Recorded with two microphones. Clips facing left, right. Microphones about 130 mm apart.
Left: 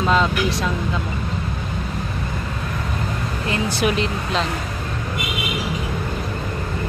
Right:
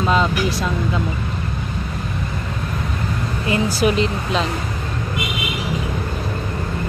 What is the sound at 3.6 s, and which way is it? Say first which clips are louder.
Speech: right 2 dB; centre (ahead or behind).